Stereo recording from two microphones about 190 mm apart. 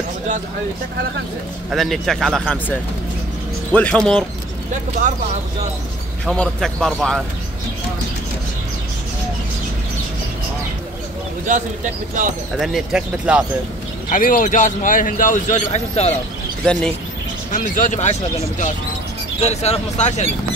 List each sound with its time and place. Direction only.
1.7 s speech: centre (ahead or behind)
6.2 s speech: 5° left (ahead or behind)
11.4 s speech: 40° right (ahead or behind)
12.5 s speech: centre (ahead or behind)
14.1 s a man's voice: 45° left (ahead or behind)
17.5 s a man's voice: 45° left (ahead or behind)
19.4 s speech: 35° left (ahead or behind)